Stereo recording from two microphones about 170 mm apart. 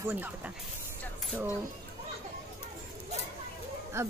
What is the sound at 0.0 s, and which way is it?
Speech, 10° right (ahead or behind).